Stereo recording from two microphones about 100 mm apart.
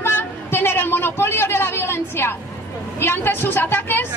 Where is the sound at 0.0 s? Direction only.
25° left (ahead or behind).